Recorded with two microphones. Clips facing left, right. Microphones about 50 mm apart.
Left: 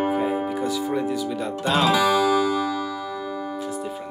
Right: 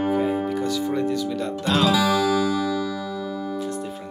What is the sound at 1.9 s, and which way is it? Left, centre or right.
Music, centre.